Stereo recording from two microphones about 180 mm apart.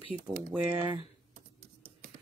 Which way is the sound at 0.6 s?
30° right (ahead or behind).